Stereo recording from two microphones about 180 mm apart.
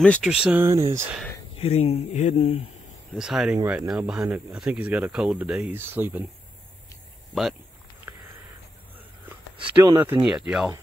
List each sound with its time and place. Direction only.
0.0 s speech: 5° left (ahead or behind); by 1.0 s 15° right (ahead or behind)
1.6 s speech: 35° left (ahead or behind)
3.2 s speech: 5° right (ahead or behind)
9.8 s speech: 10° right (ahead or behind)